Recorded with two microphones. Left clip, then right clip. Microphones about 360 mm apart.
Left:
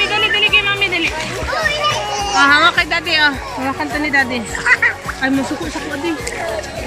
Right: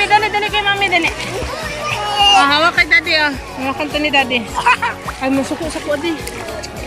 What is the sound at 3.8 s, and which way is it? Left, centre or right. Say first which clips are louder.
Speech: right 1 dB; centre.